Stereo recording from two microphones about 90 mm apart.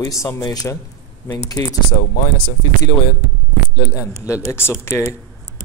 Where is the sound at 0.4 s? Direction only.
45° left (ahead or behind).